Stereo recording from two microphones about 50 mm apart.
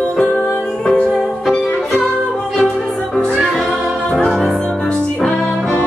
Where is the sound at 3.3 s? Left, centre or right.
Centre.